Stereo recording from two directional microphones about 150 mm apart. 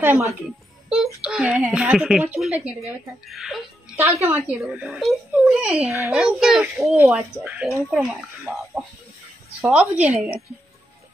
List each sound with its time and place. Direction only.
0.0 s speech: 15° right (ahead or behind)
0.8 s a child's voice: 5° right (ahead or behind)
9.6 s a child's voice: 5° right (ahead or behind)